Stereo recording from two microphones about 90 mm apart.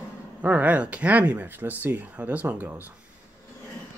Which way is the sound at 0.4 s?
20° right (ahead or behind).